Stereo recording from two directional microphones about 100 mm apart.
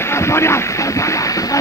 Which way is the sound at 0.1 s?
25° left (ahead or behind).